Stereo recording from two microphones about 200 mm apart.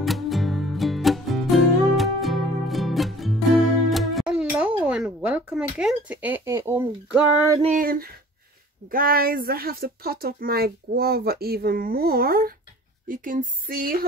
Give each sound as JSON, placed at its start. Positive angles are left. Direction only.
{"t": 0.0, "sound": "music", "side_deg": 0}
{"t": 7.6, "sound": "speech", "side_deg": -40}